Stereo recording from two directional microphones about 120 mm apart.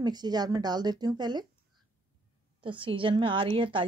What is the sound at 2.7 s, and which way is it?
A woman's voice, 45° right (ahead or behind).